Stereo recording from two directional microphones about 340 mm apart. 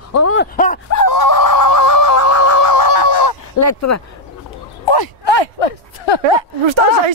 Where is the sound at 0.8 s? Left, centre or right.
Left.